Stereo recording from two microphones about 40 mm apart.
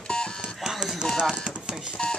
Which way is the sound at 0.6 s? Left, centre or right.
Centre.